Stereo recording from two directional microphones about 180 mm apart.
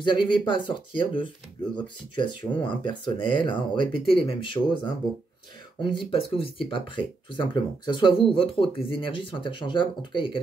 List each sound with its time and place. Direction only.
0.0 s speech: 25° left (ahead or behind)